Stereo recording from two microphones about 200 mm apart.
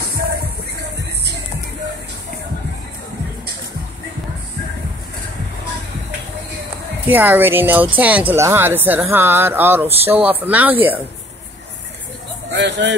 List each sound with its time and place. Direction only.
7.1 s speech: 10° right (ahead or behind)
12.5 s speech: 60° right (ahead or behind)